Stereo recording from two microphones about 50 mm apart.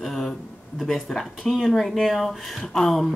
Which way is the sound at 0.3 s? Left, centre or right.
Centre.